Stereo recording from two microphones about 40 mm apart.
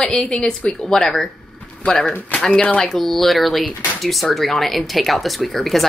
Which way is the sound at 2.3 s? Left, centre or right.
Centre.